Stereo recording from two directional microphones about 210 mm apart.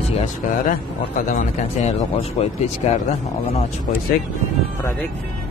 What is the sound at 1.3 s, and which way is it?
Speech, 35° left (ahead or behind).